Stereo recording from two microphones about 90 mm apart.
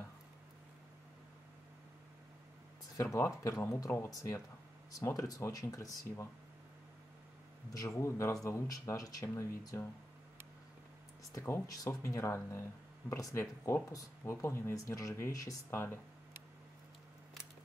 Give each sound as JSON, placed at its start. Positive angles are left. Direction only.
{"t": 3.0, "sound": "speech", "side_deg": 35}
{"t": 7.7, "sound": "speech", "side_deg": 35}
{"t": 11.3, "sound": "speech", "side_deg": 35}